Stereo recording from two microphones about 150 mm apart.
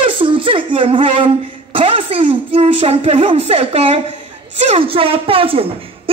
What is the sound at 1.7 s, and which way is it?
Speech, 35° right (ahead or behind).